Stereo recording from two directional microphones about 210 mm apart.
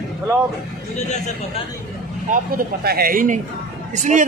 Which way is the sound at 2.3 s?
45° right (ahead or behind).